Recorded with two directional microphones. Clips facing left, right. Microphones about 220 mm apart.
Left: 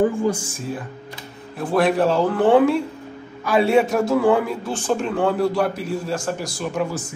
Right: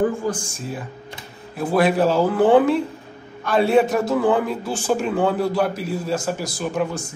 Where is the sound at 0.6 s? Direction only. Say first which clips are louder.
Left 2 dB; centre (ahead or behind).